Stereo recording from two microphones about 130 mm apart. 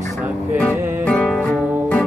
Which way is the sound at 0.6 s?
10° left (ahead or behind).